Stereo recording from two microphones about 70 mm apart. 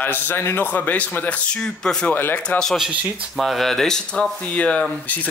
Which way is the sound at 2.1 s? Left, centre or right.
Left.